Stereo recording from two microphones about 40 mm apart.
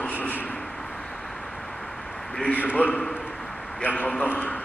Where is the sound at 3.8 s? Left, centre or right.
Left.